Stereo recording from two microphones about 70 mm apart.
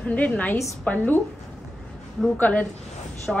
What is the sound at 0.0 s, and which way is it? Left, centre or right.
A woman's voice, left.